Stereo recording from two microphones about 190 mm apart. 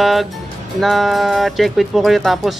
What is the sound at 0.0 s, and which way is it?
Speech, centre (ahead or behind).